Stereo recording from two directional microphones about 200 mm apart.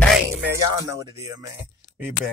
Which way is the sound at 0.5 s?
15° right (ahead or behind).